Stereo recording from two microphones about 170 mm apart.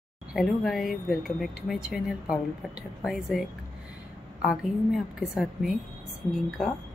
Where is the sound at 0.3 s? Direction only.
Centre (ahead or behind).